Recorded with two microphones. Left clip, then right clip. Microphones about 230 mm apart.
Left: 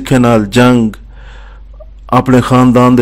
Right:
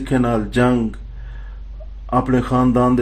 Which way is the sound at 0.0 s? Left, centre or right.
Left.